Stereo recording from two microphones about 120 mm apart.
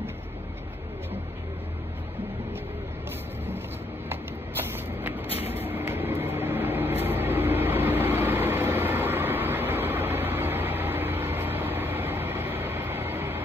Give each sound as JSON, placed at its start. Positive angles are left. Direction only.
{"t": 4.1, "sound": "vehicle", "side_deg": -20}